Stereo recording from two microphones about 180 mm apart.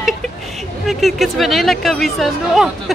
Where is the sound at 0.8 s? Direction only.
Centre (ahead or behind).